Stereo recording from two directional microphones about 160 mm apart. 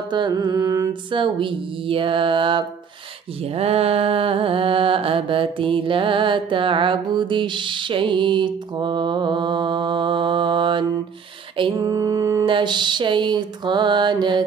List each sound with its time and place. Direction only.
0.1 s mantra: 25° right (ahead or behind)
1.1 s a sound: 35° right (ahead or behind)
11.8 s mantra: 20° right (ahead or behind)